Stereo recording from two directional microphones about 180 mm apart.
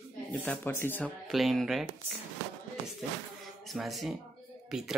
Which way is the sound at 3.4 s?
Centre (ahead or behind).